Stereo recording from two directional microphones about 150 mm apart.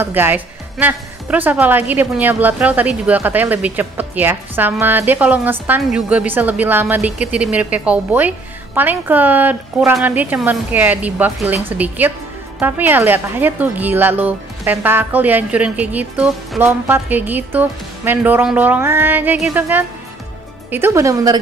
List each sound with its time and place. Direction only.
0.0 s speech: 15° right (ahead or behind)